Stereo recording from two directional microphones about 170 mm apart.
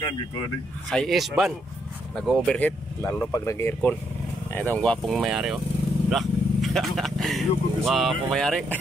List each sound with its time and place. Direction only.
0.8 s speech: centre (ahead or behind)
3.0 s speech: 15° left (ahead or behind)